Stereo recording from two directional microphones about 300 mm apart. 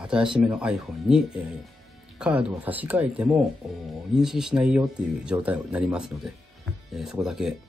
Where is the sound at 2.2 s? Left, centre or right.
Centre.